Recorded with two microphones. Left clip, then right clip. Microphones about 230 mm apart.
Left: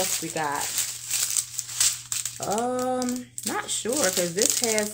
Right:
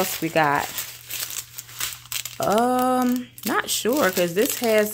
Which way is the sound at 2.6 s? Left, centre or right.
Right.